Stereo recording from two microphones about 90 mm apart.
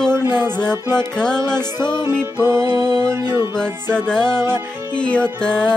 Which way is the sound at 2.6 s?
45° right (ahead or behind).